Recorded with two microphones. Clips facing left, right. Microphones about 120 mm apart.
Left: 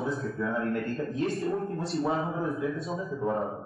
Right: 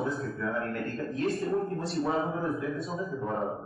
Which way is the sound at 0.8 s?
30° left (ahead or behind).